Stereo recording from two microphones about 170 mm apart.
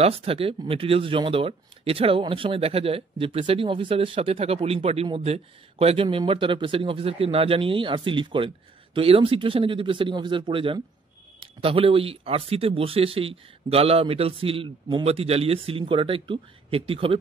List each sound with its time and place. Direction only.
0.0 s speech: 35° right (ahead or behind)